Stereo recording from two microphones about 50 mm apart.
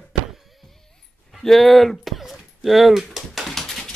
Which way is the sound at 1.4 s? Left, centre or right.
Centre.